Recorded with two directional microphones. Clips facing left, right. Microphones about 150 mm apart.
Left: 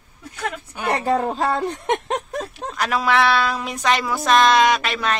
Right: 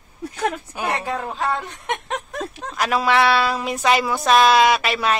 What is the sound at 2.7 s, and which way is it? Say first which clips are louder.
A woman's voice: right 1 dB; 5° right (ahead or behind).